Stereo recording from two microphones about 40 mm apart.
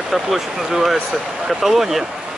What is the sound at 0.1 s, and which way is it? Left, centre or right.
Speech, centre.